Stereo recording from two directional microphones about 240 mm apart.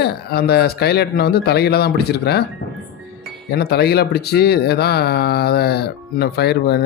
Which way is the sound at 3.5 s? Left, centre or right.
Left.